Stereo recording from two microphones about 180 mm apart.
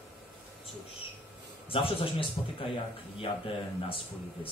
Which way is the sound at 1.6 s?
30° left (ahead or behind).